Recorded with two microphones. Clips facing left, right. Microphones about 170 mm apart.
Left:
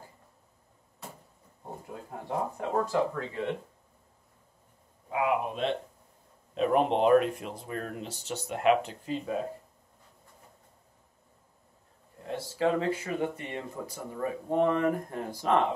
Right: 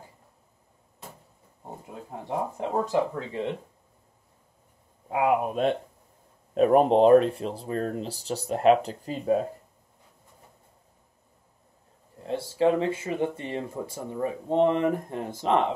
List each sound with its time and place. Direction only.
2.0 s speech: 20° right (ahead or behind)
5.1 s speech: 45° right (ahead or behind)
12.3 s speech: 25° right (ahead or behind)